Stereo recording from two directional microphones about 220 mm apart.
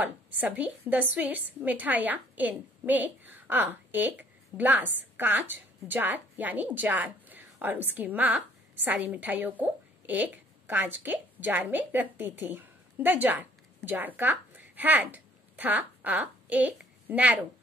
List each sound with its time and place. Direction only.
0.0 s a woman's voice: 5° right (ahead or behind)